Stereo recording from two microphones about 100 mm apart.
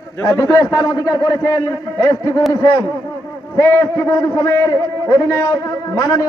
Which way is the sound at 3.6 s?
30° left (ahead or behind).